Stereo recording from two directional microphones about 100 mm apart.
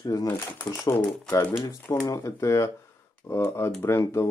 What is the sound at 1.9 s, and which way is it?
Speech, 30° left (ahead or behind).